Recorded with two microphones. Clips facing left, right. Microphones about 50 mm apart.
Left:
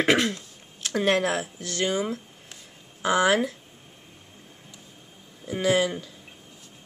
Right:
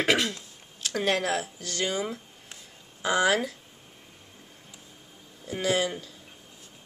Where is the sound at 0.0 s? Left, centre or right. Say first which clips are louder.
Left 3 dB; centre.